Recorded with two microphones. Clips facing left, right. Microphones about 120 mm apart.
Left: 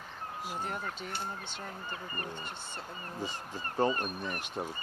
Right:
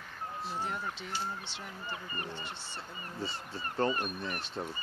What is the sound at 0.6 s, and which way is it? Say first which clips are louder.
Speech: even; 50° left (ahead or behind).